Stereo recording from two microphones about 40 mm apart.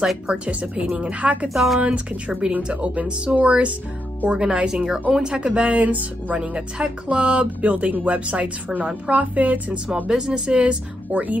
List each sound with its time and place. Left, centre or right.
0.3 s speech: right
1.2 s speech: right
1.5 s a woman's voice: centre
1.9 s speech: right
2.5 s speech: right
4.3 s speech: centre; by 6.4 s right
6.4 s speech: right
10.0 s speech: centre; by 11.3 s right